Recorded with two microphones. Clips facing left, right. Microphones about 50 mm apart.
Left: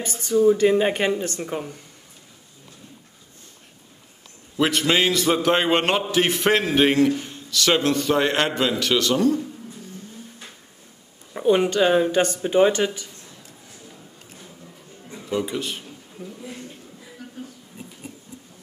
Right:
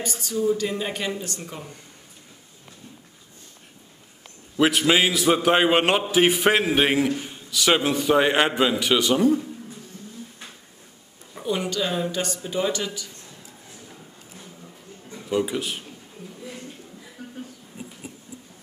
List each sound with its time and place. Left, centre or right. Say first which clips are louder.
0.0 s speech: left 7 dB; left
4.6 s a man's voice: right 1 dB; centre
11.3 s speech: left 8 dB; left
15.2 s speech: right 1 dB; centre